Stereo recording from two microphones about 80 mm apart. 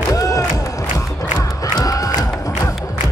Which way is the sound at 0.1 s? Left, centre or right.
Left.